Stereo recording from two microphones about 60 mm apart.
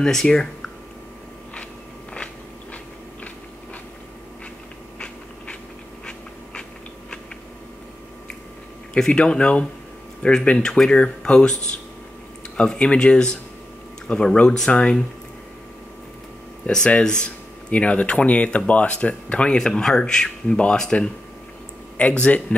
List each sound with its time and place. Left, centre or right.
0.0 s speech: centre
4.9 s a sound: centre
8.9 s speech: centre
12.5 s speech: centre
16.7 s speech: centre